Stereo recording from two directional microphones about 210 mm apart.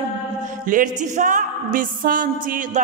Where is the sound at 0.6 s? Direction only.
40° right (ahead or behind).